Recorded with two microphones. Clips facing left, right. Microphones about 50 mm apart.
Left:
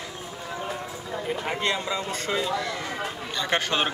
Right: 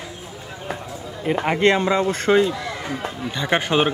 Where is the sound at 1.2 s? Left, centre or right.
Right.